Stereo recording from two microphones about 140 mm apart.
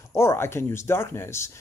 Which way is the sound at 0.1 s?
20° left (ahead or behind).